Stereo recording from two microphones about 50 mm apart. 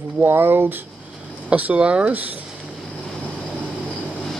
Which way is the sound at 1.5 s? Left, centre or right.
Right.